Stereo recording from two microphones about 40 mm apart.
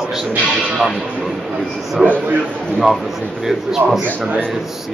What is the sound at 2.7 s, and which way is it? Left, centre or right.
Speech, centre.